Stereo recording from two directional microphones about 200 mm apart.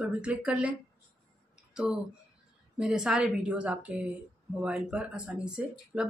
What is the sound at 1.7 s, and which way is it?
Speech, 5° right (ahead or behind).